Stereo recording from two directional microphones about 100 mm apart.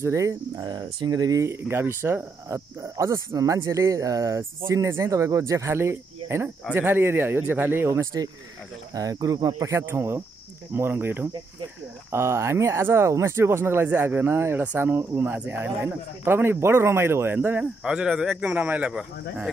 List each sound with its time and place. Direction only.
0.0 s speech: 30° right (ahead or behind); by 19.5 s 5° right (ahead or behind)